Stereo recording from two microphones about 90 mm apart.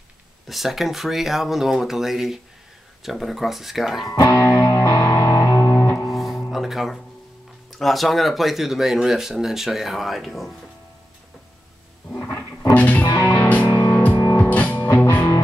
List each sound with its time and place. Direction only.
0.5 s speech: centre (ahead or behind)
4.1 s music: 25° left (ahead or behind)
6.0 s music: centre (ahead or behind)
6.5 s speech: 5° right (ahead or behind)
12.7 s music: 15° left (ahead or behind)